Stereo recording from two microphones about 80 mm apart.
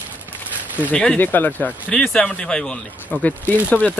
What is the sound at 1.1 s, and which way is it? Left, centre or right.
Speech, left.